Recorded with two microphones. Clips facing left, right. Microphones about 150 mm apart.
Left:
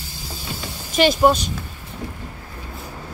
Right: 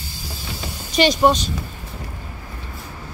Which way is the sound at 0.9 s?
5° left (ahead or behind).